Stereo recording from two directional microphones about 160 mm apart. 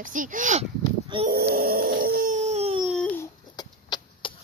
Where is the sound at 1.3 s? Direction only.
70° right (ahead or behind); by 2.8 s 40° right (ahead or behind).